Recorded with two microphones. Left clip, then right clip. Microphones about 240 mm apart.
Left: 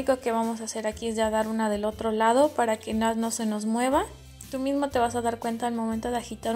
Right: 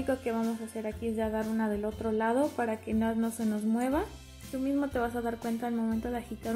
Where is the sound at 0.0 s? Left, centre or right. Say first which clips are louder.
Left 6 dB; centre.